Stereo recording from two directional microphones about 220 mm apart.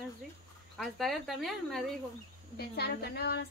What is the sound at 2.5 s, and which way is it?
Speech, 45° left (ahead or behind).